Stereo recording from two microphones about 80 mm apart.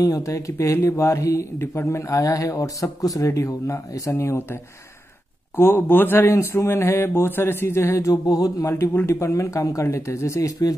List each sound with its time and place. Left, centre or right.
0.0 s speech: left
5.6 s speech: left